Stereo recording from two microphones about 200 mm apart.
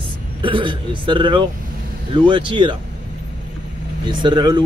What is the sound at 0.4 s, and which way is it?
Speech, 25° right (ahead or behind).